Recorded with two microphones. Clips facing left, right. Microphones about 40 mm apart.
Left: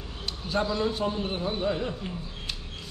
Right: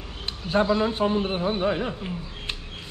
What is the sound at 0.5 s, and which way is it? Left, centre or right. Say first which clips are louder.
A man's voice: right 5 dB; right.